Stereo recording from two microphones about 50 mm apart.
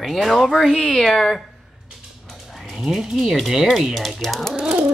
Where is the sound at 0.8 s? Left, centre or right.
Centre.